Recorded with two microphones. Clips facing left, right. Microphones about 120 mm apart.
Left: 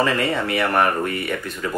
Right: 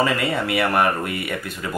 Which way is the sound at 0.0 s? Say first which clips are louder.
Left 1 dB; 5° right (ahead or behind).